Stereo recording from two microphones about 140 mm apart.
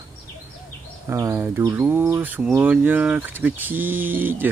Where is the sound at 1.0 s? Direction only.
20° right (ahead or behind).